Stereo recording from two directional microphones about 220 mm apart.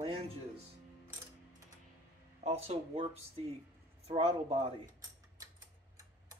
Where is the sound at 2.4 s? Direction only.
30° right (ahead or behind).